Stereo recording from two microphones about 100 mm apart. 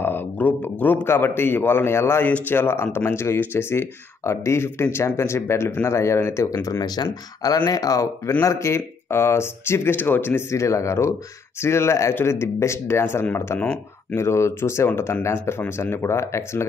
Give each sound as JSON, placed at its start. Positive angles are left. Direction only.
{"t": 0.0, "sound": "a sound", "side_deg": 20}
{"t": 0.6, "sound": "a man's voice", "side_deg": 15}
{"t": 14.1, "sound": "a man's voice", "side_deg": 25}